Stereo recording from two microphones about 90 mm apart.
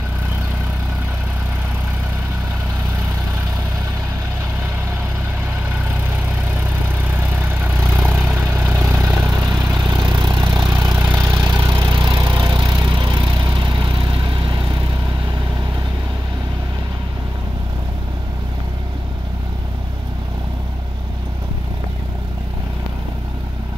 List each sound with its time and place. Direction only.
7.1 s vehicle: 20° right (ahead or behind)
9.8 s vehicle: 50° right (ahead or behind); by 14.6 s 70° right (ahead or behind)